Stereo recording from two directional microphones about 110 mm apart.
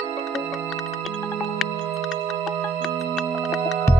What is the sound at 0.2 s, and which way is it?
Music, centre (ahead or behind).